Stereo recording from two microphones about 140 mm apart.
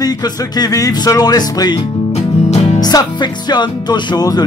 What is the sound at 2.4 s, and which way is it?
Music, 55° left (ahead or behind).